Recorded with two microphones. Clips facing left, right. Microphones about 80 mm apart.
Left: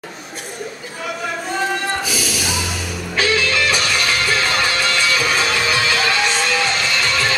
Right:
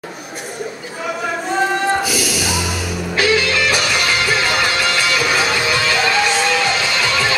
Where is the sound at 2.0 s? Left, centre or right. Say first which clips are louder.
Right 3 dB; centre.